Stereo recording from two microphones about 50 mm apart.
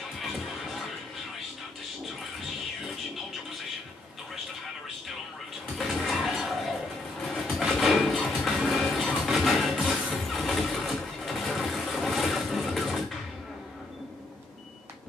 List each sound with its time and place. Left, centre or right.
0.2 s music: centre
5.9 s a sound: centre
7.3 s music: centre
9.8 s vehicle: centre